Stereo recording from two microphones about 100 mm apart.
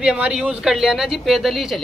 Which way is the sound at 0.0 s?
10° right (ahead or behind).